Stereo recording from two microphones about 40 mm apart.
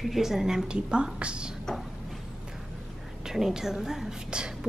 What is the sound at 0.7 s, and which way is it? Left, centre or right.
Speech, right.